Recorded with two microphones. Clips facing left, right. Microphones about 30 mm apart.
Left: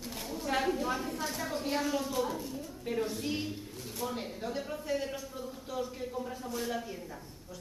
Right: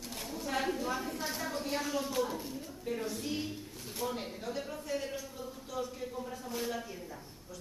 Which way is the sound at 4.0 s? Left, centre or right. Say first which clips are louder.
Left 1 dB; centre.